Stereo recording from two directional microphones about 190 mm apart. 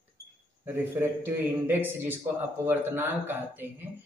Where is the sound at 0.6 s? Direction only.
10° right (ahead or behind).